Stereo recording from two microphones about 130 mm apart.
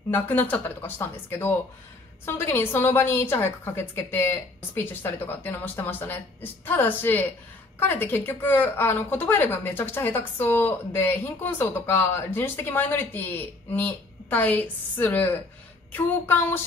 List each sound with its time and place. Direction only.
0.1 s a woman's voice: 15° left (ahead or behind)